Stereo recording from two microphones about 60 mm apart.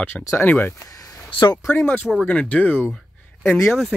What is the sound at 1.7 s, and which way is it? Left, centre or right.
Speech, left.